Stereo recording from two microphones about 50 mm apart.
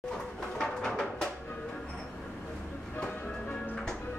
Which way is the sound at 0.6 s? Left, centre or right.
Centre.